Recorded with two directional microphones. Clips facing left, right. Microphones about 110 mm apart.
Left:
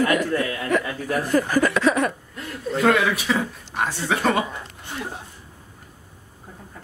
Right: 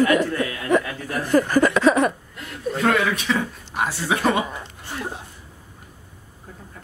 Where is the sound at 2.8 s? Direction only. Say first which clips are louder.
Left 2 dB; centre (ahead or behind).